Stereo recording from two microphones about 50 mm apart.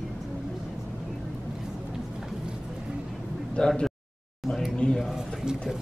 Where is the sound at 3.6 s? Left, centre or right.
Centre.